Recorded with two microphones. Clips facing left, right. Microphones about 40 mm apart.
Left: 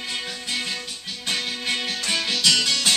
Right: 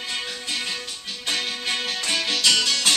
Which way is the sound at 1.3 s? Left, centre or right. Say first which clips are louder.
Even; centre.